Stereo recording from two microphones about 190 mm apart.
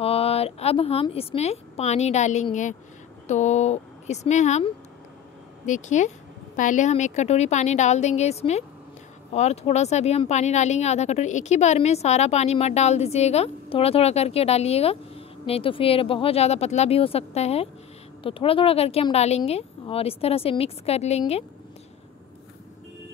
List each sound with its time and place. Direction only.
0.0 s speech: 30° left (ahead or behind)
5.7 s speech: 40° left (ahead or behind)